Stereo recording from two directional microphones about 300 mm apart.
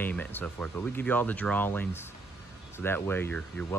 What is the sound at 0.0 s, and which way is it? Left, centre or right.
Speech, centre.